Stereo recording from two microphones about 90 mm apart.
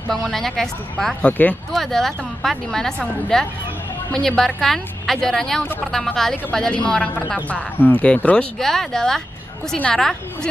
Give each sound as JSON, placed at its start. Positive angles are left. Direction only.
{"t": 0.1, "sound": "a woman's voice", "side_deg": 5}
{"t": 1.2, "sound": "a woman's voice", "side_deg": 15}
{"t": 1.7, "sound": "a woman's voice", "side_deg": 5}